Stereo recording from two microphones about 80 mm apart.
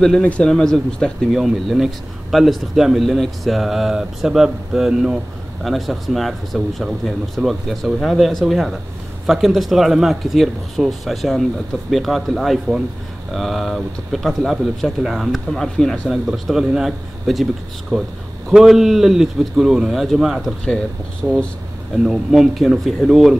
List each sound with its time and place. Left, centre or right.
0.2 s speech: centre
1.3 s speech: centre
21.2 s speech: right
21.9 s speech: centre